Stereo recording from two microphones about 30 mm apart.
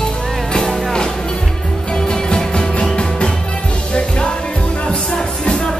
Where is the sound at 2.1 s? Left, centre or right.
Left.